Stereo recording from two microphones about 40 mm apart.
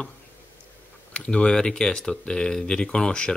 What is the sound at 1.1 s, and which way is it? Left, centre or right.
Speech, left.